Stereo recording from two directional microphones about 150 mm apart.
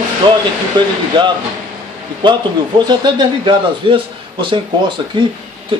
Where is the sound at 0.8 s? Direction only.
30° right (ahead or behind).